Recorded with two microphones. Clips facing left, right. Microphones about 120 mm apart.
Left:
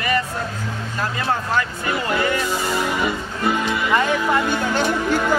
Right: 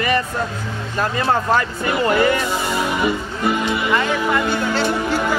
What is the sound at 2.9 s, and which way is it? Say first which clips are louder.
Speech: right 2 dB; 15° right (ahead or behind).